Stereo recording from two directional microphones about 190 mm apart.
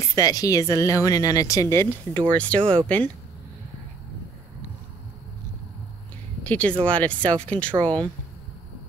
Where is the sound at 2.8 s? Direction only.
10° left (ahead or behind).